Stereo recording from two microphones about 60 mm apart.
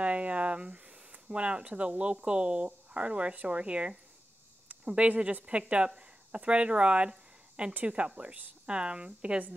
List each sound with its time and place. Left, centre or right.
0.0 s speech: right